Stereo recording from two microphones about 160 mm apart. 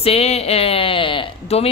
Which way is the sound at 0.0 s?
40° left (ahead or behind).